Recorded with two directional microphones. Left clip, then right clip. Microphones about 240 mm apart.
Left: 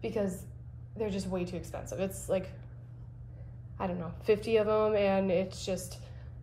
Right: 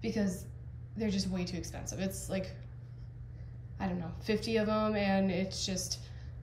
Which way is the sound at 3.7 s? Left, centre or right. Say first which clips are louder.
Left 3 dB; centre.